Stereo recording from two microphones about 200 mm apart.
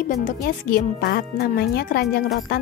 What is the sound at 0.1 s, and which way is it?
Speech, 50° left (ahead or behind).